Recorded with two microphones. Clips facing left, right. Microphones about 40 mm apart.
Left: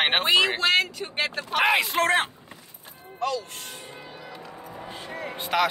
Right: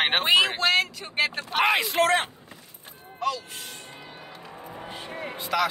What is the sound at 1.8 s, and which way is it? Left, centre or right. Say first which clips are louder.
Speech: even; centre.